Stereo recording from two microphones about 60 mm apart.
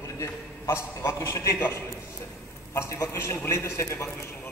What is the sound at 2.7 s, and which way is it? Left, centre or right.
A man's voice, left.